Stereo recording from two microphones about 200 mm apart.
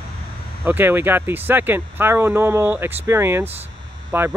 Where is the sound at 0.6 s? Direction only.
10° right (ahead or behind).